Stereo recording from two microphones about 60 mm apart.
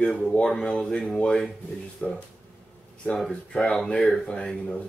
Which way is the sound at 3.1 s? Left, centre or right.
Centre.